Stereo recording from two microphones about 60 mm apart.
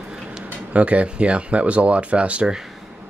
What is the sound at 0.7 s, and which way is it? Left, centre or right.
Speech, right.